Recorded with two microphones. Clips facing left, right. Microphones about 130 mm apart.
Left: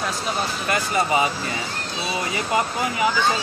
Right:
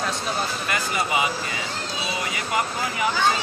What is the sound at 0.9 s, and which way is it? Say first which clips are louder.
Speech: left 4 dB; 35° left (ahead or behind).